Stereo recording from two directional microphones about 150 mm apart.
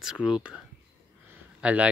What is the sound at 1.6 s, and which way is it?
Speech, 10° right (ahead or behind).